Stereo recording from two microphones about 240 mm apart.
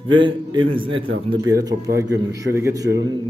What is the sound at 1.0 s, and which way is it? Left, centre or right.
Speech, right.